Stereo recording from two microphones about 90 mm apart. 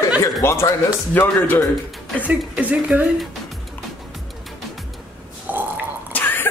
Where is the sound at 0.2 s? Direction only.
30° left (ahead or behind).